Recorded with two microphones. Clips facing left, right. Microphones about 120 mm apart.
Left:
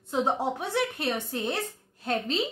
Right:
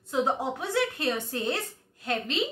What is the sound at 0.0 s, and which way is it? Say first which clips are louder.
A woman's voice: even; 25° left (ahead or behind).